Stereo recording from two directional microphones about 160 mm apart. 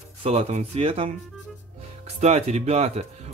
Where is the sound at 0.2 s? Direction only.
40° right (ahead or behind).